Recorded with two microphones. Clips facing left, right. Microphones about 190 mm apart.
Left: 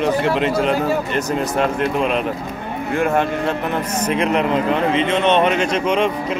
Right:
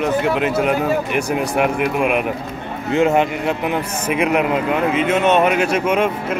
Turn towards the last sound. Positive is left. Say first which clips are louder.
# even
turn(degrees=-5)  # may be behind; listen again after turning